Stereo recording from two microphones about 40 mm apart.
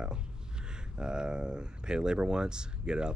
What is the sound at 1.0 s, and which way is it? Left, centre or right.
Speech, right.